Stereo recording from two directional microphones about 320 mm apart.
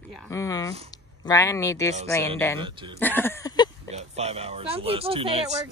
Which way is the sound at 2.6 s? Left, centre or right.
Centre.